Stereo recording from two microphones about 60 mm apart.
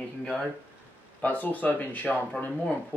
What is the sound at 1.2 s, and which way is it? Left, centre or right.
Speech, left.